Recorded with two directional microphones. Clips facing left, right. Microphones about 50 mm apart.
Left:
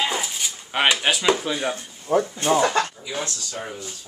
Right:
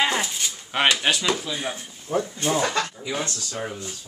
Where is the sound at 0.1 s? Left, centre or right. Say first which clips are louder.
Right 1 dB; centre.